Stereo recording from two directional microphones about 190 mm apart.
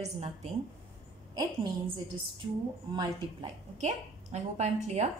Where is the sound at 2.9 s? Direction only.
25° right (ahead or behind).